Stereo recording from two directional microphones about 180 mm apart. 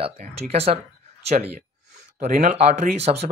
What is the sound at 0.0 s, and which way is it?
Speech, 35° right (ahead or behind).